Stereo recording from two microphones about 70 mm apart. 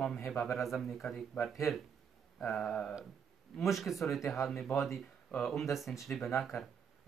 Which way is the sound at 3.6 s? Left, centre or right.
Centre.